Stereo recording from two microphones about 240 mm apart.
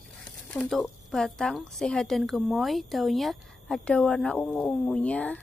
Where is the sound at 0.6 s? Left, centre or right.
Centre.